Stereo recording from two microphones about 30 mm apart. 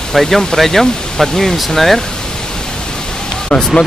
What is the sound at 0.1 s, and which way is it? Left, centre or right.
Speech, centre.